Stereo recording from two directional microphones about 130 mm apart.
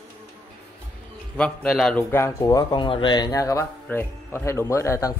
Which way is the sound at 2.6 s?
35° left (ahead or behind).